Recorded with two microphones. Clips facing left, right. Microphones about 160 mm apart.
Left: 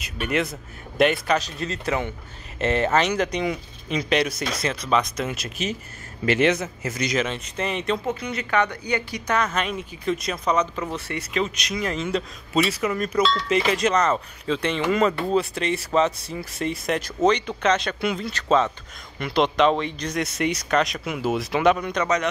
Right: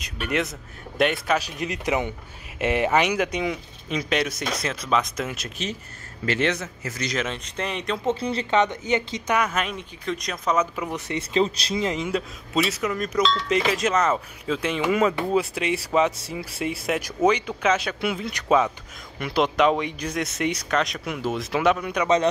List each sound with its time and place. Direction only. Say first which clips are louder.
0.0 s speech: left 1 dB; centre (ahead or behind)
1.5 s a man's voice: right 1 dB; 15° right (ahead or behind); by 7.2 s 15° left (ahead or behind)
7.2 s speech: left 3 dB; 5° left (ahead or behind)
8.1 s speech: right 2 dB; 30° right (ahead or behind)
11.3 s speech: right 4 dB; 30° right (ahead or behind)
12.1 s speech: left 1 dB; 5° right (ahead or behind)